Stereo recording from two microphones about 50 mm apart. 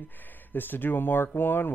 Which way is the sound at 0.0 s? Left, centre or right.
Left.